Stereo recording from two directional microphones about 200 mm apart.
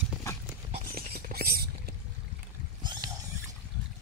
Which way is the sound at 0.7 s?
45° right (ahead or behind).